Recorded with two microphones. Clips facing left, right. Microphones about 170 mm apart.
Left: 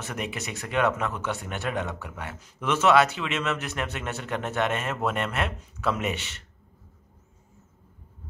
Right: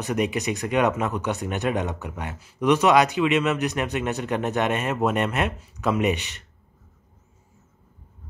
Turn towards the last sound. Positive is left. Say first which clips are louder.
# right 5 dB
turn(degrees=-15)  # may be behind; listen again after turning